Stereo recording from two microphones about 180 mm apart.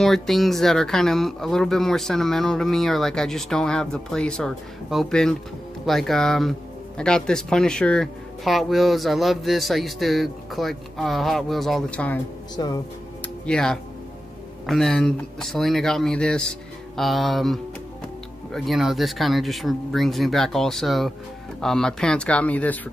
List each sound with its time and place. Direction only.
0.0 s speech: centre (ahead or behind)
12.5 s speech: 20° left (ahead or behind)
13.5 s speech: 5° left (ahead or behind)